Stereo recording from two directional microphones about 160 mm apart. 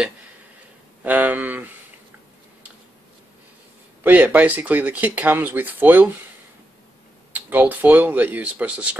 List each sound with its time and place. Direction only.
1.0 s a sound: 10° right (ahead or behind)
4.0 s speech: 10° right (ahead or behind)
7.3 s speech: 10° right (ahead or behind)